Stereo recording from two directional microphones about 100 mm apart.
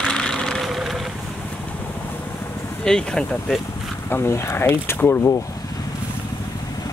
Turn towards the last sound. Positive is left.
turn(degrees=25)  # may be behind; listen again after turning